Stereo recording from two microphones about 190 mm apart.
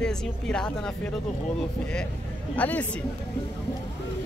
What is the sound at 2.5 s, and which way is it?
Speech, 10° left (ahead or behind).